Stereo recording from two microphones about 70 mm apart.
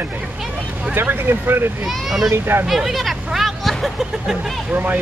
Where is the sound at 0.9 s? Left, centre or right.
Right.